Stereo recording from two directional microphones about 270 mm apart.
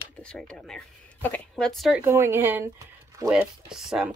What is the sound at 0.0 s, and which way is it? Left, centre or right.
Speech, centre.